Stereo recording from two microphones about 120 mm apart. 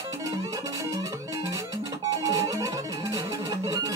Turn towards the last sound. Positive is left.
turn(degrees=-30)  # may be behind; listen again after turning